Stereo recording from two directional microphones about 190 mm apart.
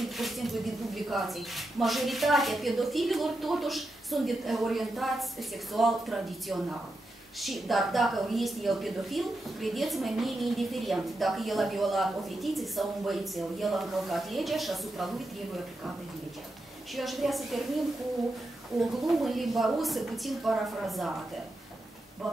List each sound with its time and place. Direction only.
0.0 s a woman's voice: centre (ahead or behind)
16.9 s a woman's voice: centre (ahead or behind)